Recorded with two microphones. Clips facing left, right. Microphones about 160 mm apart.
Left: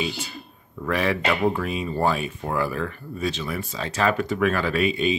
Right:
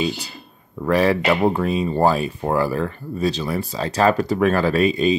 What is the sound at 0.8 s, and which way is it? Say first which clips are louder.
Speech: right 6 dB; 35° right (ahead or behind).